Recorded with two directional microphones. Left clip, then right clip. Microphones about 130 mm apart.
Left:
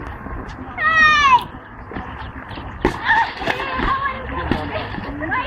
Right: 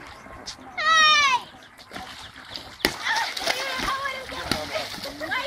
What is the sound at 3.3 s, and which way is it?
Run, 35° right (ahead or behind).